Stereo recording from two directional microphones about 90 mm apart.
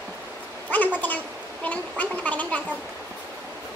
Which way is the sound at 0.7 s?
20° left (ahead or behind).